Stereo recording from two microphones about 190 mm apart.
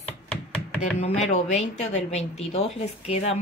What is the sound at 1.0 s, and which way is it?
Speech, 35° left (ahead or behind).